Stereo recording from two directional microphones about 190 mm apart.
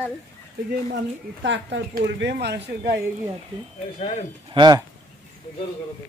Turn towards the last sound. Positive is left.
turn(degrees=-20)  # may be behind; listen again after turning